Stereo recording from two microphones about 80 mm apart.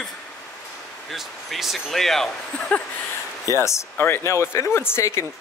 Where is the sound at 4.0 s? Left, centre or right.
Left.